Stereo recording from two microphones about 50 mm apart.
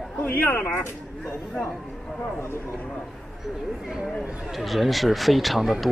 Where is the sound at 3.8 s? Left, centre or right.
Centre.